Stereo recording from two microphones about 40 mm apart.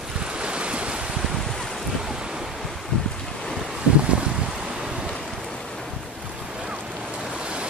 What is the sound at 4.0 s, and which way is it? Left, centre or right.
Boat, right.